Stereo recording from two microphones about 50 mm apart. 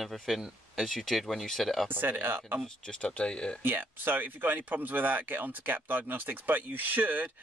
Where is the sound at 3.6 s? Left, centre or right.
Right.